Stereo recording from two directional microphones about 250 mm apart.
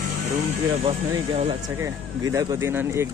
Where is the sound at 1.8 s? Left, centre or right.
Centre.